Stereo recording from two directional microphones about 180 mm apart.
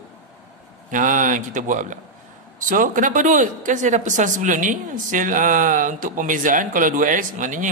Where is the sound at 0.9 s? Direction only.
45° right (ahead or behind).